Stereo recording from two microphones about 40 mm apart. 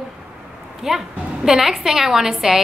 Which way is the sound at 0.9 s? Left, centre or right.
Centre.